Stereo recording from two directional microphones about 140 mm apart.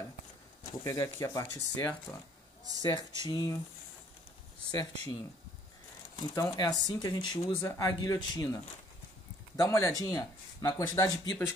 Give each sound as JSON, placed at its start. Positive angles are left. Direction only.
{"t": 0.7, "sound": "speech", "side_deg": 25}
{"t": 2.1, "sound": "speech", "side_deg": 5}
{"t": 2.8, "sound": "speech", "side_deg": 30}
{"t": 4.6, "sound": "speech", "side_deg": 30}
{"t": 6.1, "sound": "speech", "side_deg": 25}
{"t": 9.6, "sound": "speech", "side_deg": 20}